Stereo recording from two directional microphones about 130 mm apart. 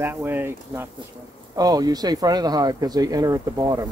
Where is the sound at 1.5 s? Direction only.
30° right (ahead or behind).